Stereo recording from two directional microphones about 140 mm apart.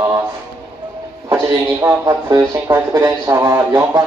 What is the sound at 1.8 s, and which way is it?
Speech, 20° right (ahead or behind).